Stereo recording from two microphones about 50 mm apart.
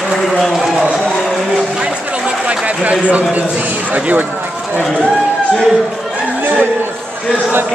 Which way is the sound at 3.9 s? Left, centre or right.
Right.